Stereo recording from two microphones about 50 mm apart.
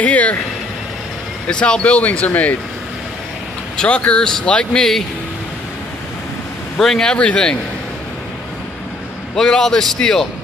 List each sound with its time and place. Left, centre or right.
0.0 s speech: left
1.5 s speech: left
3.7 s speech: left
4.7 s a man's voice: centre
6.8 s a man's voice: centre
7.1 s speech: left
9.3 s a man's voice: centre